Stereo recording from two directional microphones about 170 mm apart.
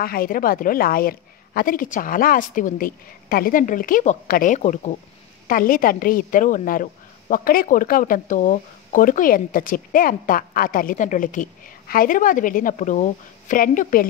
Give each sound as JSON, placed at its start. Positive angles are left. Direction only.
{"t": 0.0, "sound": "a woman's voice", "side_deg": 60}